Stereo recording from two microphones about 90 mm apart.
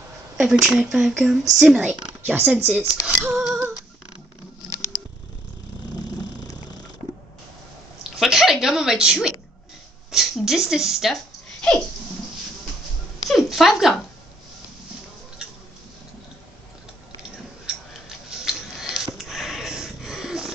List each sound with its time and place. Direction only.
0.4 s speech: 5° right (ahead or behind)
2.2 s speech: 15° right (ahead or behind)
3.3 s female singing: 5° right (ahead or behind)
8.2 s a woman's voice: 5° right (ahead or behind)
13.2 s a sound: centre (ahead or behind)
17.6 s tick-tock: 5° right (ahead or behind)